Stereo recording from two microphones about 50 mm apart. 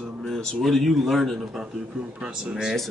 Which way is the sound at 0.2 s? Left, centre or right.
Centre.